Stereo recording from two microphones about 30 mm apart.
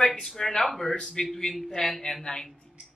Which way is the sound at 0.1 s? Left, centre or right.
Centre.